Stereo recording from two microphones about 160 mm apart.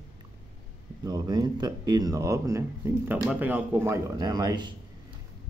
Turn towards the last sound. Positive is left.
turn(degrees=-25)  # may be behind; listen again after turning